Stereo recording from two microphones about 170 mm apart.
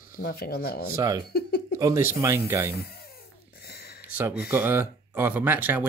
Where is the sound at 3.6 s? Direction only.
65° left (ahead or behind).